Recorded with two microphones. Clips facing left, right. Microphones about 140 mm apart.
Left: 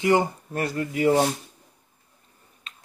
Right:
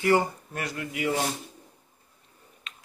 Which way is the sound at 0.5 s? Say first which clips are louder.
Left 7 dB; 35° left (ahead or behind).